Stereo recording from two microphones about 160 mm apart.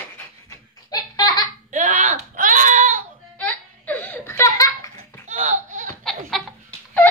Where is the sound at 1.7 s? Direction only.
50° right (ahead or behind).